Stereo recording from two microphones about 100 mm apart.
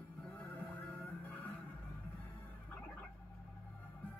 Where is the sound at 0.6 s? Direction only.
15° left (ahead or behind).